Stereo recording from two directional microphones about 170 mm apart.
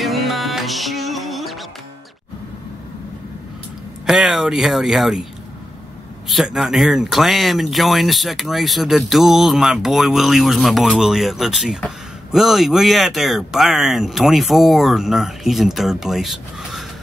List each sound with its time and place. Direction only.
0.0 s music: centre (ahead or behind)
4.0 s speech: 5° right (ahead or behind)
6.2 s speech: centre (ahead or behind)